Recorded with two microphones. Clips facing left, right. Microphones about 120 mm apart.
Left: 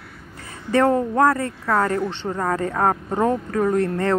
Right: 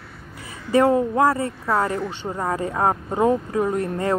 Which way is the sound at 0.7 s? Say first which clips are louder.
Right 1 dB; 15° right (ahead or behind).